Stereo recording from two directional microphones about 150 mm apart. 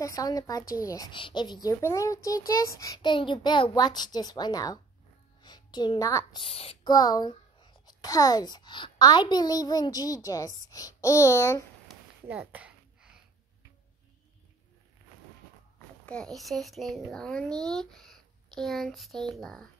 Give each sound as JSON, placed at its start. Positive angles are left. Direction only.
{"t": 0.0, "sound": "a woman's voice", "side_deg": 25}
{"t": 6.4, "sound": "a child's voice", "side_deg": 40}
{"t": 6.9, "sound": "a woman's voice", "side_deg": 25}
{"t": 11.9, "sound": "a sound", "side_deg": 0}
{"t": 16.1, "sound": "speech", "side_deg": 5}